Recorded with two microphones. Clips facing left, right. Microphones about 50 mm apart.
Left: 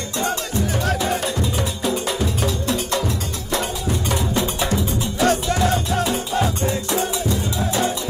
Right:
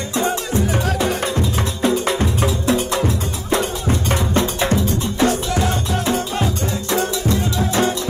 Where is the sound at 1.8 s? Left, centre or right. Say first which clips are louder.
Right 6 dB; right.